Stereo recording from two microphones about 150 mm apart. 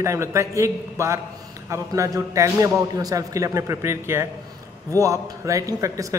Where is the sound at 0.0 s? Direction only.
20° right (ahead or behind).